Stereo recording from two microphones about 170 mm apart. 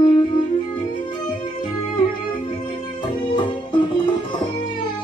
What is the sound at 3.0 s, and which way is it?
Music, 30° left (ahead or behind).